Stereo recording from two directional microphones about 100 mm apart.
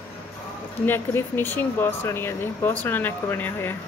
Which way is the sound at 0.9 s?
20° left (ahead or behind).